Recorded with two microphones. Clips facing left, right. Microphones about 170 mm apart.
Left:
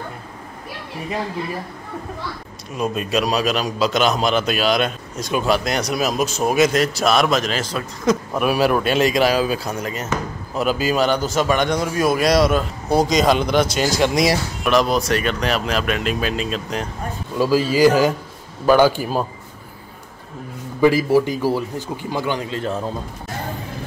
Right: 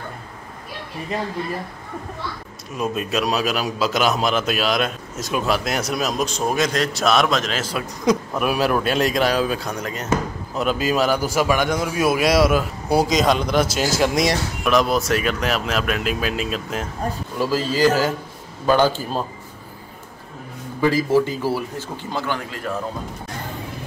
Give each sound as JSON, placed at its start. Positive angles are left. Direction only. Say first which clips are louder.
{"t": 2.7, "sound": "a man's voice", "louder": "left 2 dB", "side_deg": 0}
{"t": 8.4, "sound": "a man's voice", "louder": "left 2 dB", "side_deg": 0}
{"t": 17.4, "sound": "speech", "louder": "left 4 dB", "side_deg": 10}
{"t": 20.8, "sound": "speech", "louder": "left 3 dB", "side_deg": 15}